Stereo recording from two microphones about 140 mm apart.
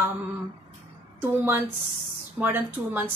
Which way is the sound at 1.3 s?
15° right (ahead or behind).